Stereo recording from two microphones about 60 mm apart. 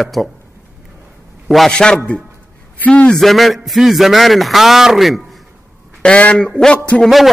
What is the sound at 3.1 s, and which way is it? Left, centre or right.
A man's voice, centre.